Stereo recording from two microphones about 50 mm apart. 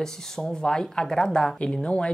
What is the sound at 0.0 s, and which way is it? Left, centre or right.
Speech, centre.